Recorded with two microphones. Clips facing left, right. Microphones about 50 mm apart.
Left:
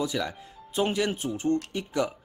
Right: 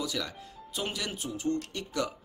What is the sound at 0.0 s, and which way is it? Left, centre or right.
Speech, left.